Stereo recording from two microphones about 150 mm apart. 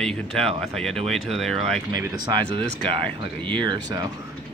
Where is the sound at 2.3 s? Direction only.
35° right (ahead or behind).